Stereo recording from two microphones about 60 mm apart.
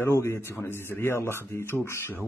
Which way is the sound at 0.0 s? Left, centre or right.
Left.